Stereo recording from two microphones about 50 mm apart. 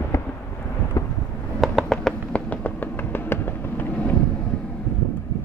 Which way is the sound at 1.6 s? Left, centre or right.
Centre.